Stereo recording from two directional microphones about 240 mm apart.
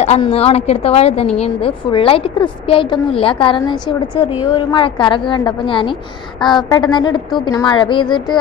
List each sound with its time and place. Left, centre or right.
0.0 s a woman's voice: left